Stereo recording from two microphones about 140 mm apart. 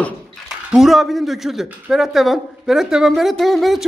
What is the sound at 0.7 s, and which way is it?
Speech, centre (ahead or behind).